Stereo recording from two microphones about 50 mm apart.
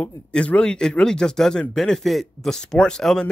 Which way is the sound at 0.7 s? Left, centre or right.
Centre.